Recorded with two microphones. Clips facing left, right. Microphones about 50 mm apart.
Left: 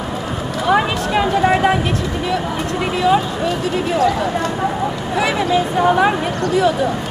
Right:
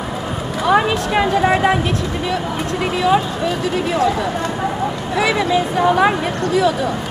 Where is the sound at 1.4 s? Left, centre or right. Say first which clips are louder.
Left 2 dB; centre.